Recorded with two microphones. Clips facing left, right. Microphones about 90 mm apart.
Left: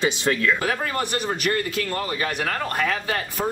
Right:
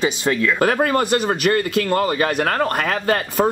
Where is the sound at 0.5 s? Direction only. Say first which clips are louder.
Right 8 dB; 50° right (ahead or behind).